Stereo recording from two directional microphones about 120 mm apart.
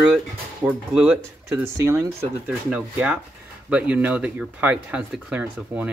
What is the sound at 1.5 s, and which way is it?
Speech, 20° right (ahead or behind).